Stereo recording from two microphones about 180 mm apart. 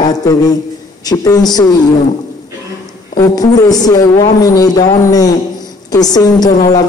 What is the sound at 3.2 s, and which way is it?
A man's voice, 20° left (ahead or behind).